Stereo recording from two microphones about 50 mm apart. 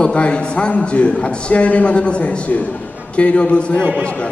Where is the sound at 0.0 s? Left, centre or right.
Left.